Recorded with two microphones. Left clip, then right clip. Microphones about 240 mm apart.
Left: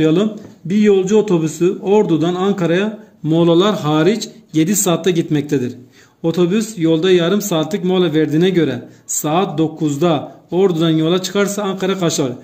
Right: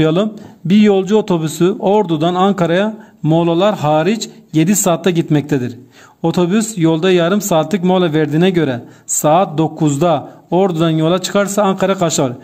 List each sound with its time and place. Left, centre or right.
0.0 s a man's voice: right